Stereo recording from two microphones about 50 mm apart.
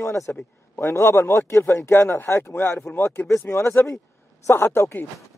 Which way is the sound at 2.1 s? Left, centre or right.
Left.